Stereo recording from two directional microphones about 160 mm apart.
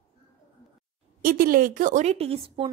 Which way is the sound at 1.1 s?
65° right (ahead or behind).